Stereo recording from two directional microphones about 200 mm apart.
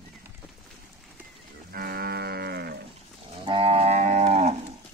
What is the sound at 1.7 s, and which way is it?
Livestock, 50° right (ahead or behind).